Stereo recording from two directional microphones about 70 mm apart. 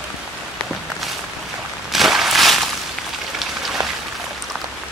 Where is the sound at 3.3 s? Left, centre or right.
Centre.